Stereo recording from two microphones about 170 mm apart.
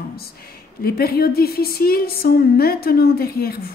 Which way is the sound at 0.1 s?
65° left (ahead or behind).